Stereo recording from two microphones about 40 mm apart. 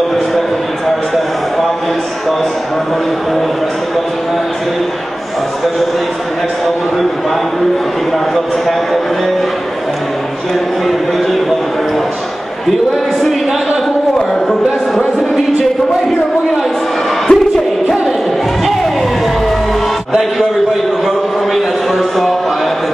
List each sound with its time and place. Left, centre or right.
17.3 s music: left